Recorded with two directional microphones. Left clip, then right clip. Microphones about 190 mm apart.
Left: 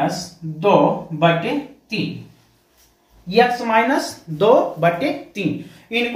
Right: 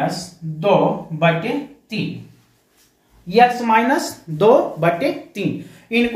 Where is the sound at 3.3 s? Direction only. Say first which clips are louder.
Right 2 dB; 40° right (ahead or behind).